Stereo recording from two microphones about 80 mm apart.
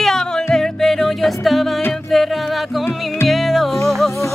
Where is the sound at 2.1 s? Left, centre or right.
Centre.